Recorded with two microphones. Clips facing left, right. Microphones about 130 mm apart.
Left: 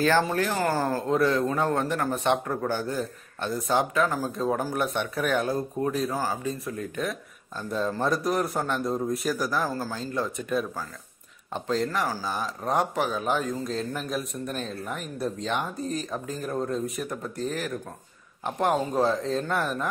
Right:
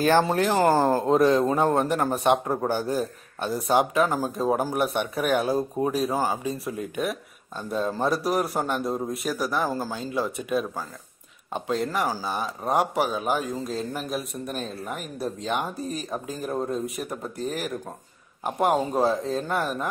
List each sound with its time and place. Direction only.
0.0 s speech: 20° right (ahead or behind); by 9.7 s centre (ahead or behind)
9.7 s speech: 15° right (ahead or behind)